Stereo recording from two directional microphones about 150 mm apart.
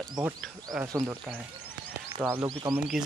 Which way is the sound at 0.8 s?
20° right (ahead or behind).